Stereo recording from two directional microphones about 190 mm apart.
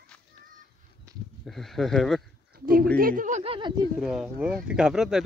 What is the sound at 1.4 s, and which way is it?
Speech, centre (ahead or behind).